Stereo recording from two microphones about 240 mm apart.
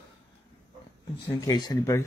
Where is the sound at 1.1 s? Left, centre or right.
Centre.